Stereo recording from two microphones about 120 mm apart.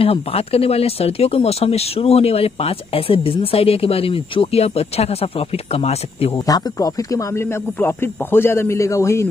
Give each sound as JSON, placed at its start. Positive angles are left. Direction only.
{"t": 0.0, "sound": "speech", "side_deg": 55}
{"t": 6.3, "sound": "speech", "side_deg": 30}